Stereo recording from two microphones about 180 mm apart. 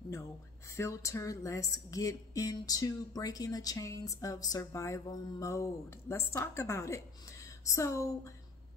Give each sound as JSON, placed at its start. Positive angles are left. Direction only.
{"t": 0.7, "sound": "speech", "side_deg": 15}